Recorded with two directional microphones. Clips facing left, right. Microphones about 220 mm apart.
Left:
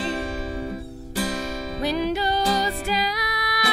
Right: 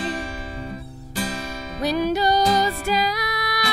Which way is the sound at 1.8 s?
45° right (ahead or behind).